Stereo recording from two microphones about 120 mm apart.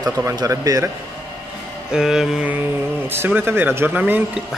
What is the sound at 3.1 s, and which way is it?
Speech, 20° right (ahead or behind).